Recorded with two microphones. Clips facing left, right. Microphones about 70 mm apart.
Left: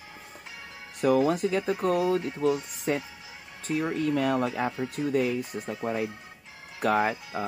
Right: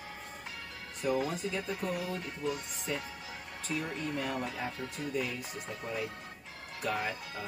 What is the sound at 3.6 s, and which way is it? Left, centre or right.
Speech, left.